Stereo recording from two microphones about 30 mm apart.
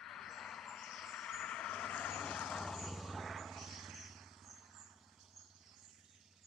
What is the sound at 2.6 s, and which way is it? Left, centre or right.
Vehicle, centre.